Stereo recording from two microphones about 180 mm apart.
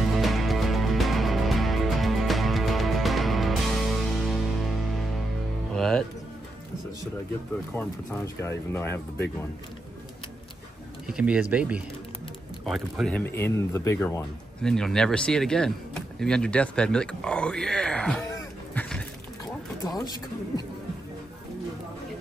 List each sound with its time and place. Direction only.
0.1 s music: centre (ahead or behind)
7.7 s speech: 15° left (ahead or behind)
11.1 s speech: 5° right (ahead or behind)
18.2 s a sound: 15° left (ahead or behind)
19.8 s speech: 20° left (ahead or behind)